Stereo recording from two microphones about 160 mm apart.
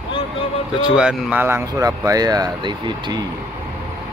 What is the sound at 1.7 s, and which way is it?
Speech, 20° right (ahead or behind).